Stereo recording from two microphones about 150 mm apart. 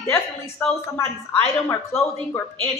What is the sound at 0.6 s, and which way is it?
Speech, 10° left (ahead or behind).